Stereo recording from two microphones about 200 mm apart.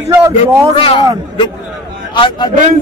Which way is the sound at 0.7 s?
25° left (ahead or behind).